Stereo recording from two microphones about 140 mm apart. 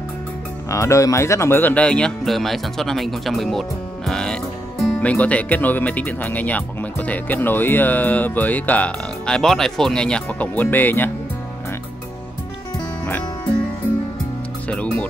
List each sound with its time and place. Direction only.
0.7 s speech: 20° left (ahead or behind)
14.7 s speech: 10° left (ahead or behind)